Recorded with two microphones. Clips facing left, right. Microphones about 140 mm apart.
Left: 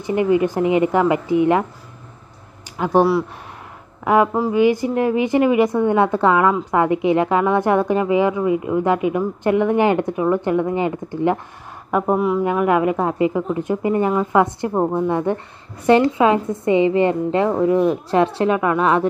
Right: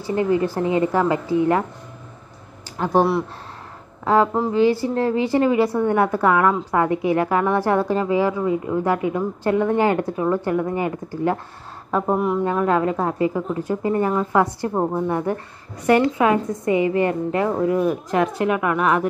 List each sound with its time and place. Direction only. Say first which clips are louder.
0.0 s a woman's voice: left 3 dB; 15° left (ahead or behind)
2.8 s a woman's voice: left 2 dB; 10° left (ahead or behind)
11.9 s a woman's voice: left 2 dB; 5° left (ahead or behind); by 19.0 s 30° left (ahead or behind)